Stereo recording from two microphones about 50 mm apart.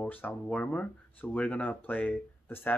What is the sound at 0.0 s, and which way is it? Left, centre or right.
Speech, left.